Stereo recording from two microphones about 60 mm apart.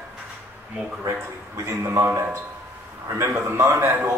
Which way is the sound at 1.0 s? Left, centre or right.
Right.